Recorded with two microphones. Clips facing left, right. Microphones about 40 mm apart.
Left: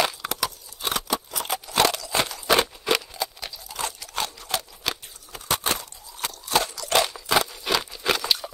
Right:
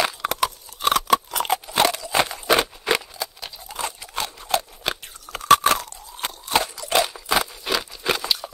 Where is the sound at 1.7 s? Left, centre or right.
Centre.